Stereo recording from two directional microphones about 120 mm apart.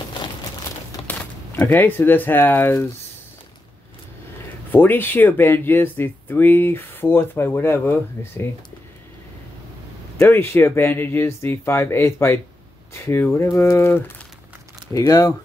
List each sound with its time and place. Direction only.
1.0 s speech: 15° left (ahead or behind)
4.6 s speech: 15° left (ahead or behind)
10.1 s speech: 20° left (ahead or behind)